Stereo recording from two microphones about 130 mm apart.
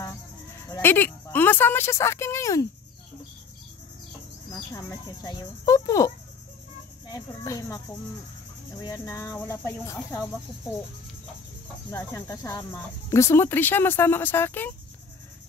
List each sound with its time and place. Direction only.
0.8 s speech: 15° left (ahead or behind)
4.5 s speech: 25° left (ahead or behind)
8.8 s speech: 25° left (ahead or behind)
12.0 s speech: 20° left (ahead or behind)